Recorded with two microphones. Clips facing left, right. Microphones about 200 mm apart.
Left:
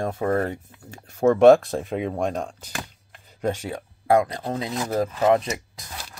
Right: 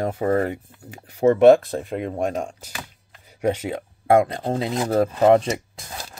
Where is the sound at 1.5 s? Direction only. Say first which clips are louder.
Even; centre (ahead or behind).